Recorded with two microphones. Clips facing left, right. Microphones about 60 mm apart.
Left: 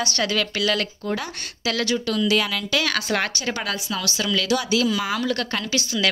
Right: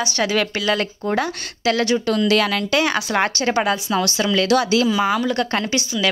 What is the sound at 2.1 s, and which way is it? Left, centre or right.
Speech, right.